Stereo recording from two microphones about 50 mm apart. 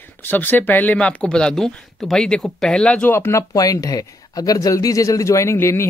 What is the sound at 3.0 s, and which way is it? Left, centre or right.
Speech, left.